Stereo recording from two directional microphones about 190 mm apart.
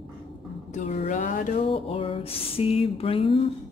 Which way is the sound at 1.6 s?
30° left (ahead or behind).